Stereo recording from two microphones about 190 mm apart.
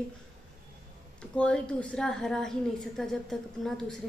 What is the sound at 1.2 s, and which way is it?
A woman's voice, 5° left (ahead or behind).